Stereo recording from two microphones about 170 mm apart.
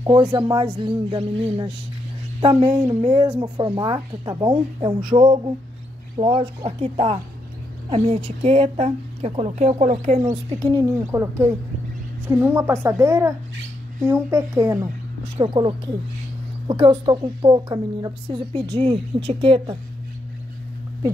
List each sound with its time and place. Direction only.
0.0 s a woman's voice: 25° right (ahead or behind); by 10.3 s 45° right (ahead or behind)
10.3 s a woman's voice: 30° right (ahead or behind)
15.3 s a woman's voice: 30° right (ahead or behind)